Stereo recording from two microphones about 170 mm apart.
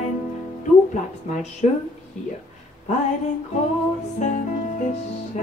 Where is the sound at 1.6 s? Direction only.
45° left (ahead or behind).